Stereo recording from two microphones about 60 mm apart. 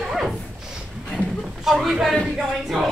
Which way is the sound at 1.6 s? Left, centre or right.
Centre.